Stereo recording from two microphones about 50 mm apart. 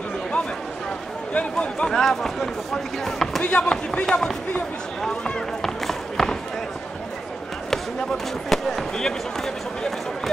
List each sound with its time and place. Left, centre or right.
1.3 s speech: left
1.9 s speech: centre
3.4 s speech: centre
5.6 s run: centre
7.7 s speech: centre